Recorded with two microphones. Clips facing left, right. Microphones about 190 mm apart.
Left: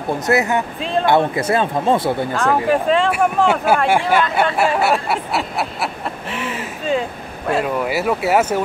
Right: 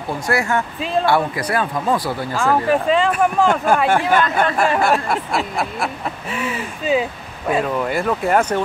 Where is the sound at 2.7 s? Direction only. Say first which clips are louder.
Even; centre (ahead or behind).